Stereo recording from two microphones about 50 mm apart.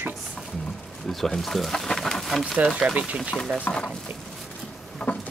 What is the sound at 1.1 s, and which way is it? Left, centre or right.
Speech, centre.